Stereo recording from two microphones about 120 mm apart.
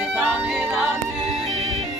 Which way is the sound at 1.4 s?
65° right (ahead or behind).